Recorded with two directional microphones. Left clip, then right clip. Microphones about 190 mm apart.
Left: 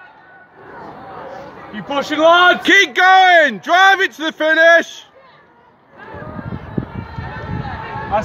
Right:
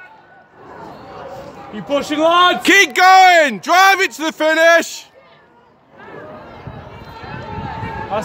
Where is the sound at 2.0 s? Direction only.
40° right (ahead or behind).